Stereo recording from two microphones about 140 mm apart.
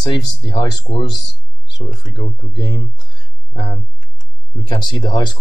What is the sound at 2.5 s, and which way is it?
Speech, 30° left (ahead or behind).